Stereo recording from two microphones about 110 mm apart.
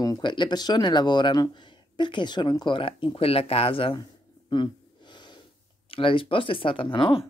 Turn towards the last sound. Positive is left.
turn(degrees=50)  # may be behind; listen again after turning